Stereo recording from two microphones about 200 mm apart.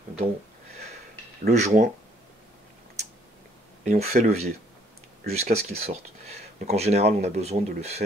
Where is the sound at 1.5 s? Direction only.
35° right (ahead or behind).